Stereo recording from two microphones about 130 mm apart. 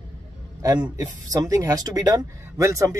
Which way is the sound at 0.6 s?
30° right (ahead or behind).